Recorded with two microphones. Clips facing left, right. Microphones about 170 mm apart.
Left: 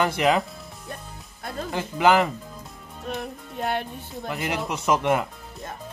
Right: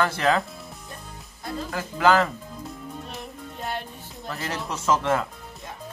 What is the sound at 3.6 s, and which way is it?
Speech, 60° left (ahead or behind).